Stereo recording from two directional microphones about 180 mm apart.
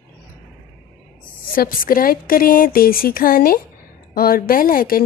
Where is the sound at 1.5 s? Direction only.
50° left (ahead or behind).